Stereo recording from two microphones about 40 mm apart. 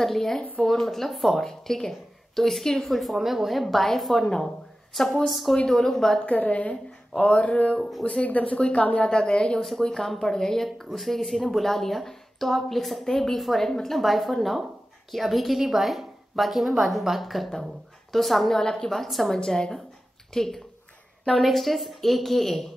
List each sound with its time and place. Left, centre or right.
0.0 s a woman's voice: centre
1.4 s a woman's voice: centre
2.9 s a woman's voice: centre
6.2 s a woman's voice: left
9.6 s a woman's voice: centre
18.9 s a woman's voice: centre
19.3 s a woman's voice: centre